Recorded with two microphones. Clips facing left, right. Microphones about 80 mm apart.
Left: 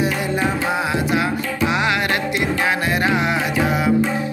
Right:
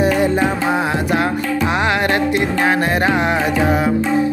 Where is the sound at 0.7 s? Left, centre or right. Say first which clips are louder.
Right 2 dB; right.